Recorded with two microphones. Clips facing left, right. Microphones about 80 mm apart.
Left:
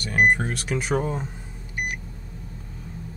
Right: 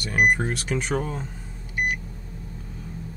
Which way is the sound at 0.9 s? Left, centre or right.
Left.